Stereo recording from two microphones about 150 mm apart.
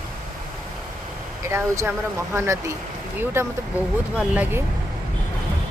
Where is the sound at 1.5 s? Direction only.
20° right (ahead or behind).